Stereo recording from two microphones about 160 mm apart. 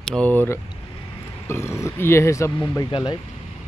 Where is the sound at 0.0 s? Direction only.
5° left (ahead or behind).